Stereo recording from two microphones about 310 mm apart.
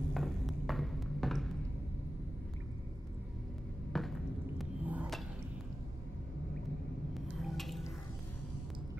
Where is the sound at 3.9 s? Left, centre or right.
Centre.